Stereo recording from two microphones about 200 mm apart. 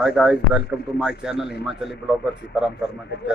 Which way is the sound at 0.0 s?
5° right (ahead or behind).